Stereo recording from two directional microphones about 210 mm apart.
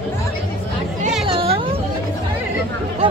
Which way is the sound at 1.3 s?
25° right (ahead or behind).